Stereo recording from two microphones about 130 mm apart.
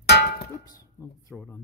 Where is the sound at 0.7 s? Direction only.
20° left (ahead or behind).